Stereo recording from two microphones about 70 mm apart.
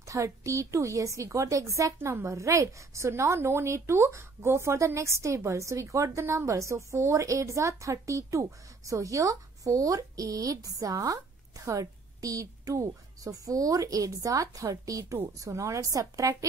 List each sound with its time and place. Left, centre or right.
0.0 s a woman's voice: right
2.0 s a woman's voice: right